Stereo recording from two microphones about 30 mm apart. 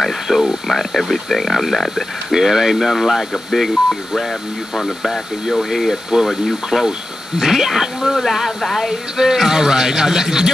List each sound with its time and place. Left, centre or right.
0.3 s a sound: centre
0.7 s speech: centre
2.3 s speech: centre
8.5 s speech: centre
9.1 s a man's voice: centre